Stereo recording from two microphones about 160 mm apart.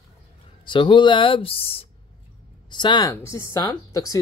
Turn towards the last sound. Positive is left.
turn(degrees=20)  # may be behind; listen again after turning